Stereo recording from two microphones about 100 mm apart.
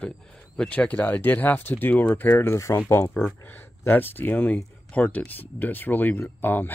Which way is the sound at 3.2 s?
15° left (ahead or behind).